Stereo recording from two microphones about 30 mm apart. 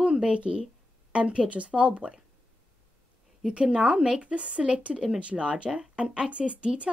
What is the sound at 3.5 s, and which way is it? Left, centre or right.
Speech, right.